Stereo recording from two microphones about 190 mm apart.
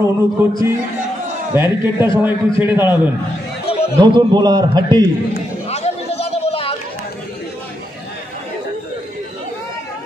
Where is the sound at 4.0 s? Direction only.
20° right (ahead or behind).